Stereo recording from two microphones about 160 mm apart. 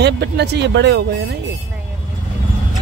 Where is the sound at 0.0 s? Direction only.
90° right.